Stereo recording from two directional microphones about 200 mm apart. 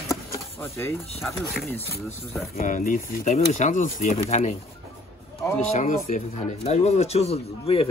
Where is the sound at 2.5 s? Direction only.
40° left (ahead or behind).